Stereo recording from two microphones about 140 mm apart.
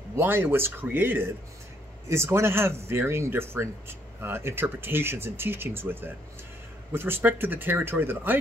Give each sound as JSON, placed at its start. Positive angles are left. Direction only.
{"t": 0.1, "sound": "speech", "side_deg": -15}